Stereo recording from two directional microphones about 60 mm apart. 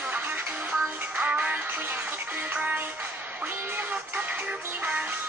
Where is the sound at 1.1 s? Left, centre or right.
Right.